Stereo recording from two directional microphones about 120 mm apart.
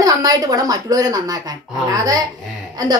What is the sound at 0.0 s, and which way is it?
A woman's voice, 30° right (ahead or behind).